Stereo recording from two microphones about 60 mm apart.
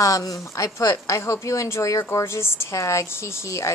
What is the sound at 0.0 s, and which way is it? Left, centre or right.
A woman's voice, left.